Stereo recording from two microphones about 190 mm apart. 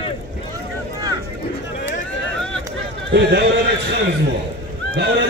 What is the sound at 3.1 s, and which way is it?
Speech, 60° right (ahead or behind).